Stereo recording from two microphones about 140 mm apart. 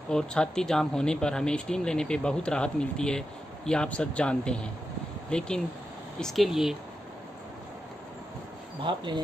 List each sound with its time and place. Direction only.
0.1 s speech: 5° left (ahead or behind)
8.8 s speech: 35° right (ahead or behind)